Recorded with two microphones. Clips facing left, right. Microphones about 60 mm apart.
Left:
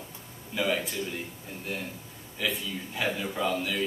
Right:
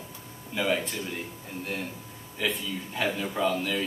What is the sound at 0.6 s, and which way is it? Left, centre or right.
Speech, centre.